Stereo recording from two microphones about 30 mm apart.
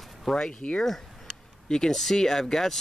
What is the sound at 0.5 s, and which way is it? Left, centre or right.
Speech, left.